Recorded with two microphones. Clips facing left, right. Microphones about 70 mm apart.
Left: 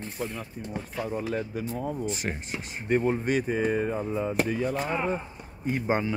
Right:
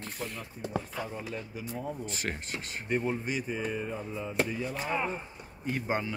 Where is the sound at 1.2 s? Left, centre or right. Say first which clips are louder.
Left 8 dB; left.